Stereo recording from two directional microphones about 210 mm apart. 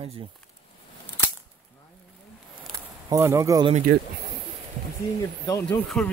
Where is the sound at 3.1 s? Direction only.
15° right (ahead or behind).